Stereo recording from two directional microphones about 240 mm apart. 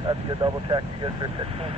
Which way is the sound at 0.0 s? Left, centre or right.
Centre.